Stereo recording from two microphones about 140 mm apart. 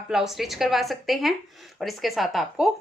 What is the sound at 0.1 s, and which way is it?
Speech, centre (ahead or behind).